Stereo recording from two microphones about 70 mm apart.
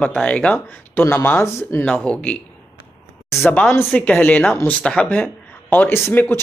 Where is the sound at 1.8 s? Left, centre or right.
Centre.